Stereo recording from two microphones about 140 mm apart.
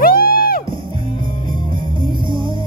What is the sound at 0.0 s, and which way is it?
Music, 90° left.